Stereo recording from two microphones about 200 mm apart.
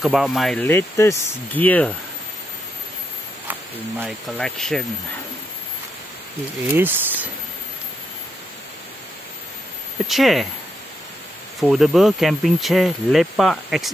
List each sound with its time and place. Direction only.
0.0 s speech: centre (ahead or behind)
4.0 s speech: 5° left (ahead or behind)
6.7 s speech: 10° right (ahead or behind)
10.0 s speech: centre (ahead or behind)
11.6 s speech: centre (ahead or behind)